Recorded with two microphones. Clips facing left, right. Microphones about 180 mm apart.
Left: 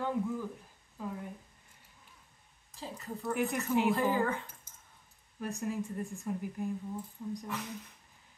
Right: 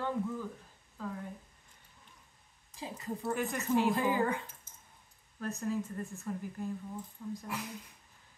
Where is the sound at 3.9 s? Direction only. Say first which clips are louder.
Even; 15° right (ahead or behind).